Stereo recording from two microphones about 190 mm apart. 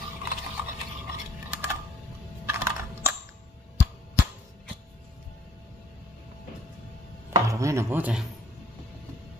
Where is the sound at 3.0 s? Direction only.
15° right (ahead or behind).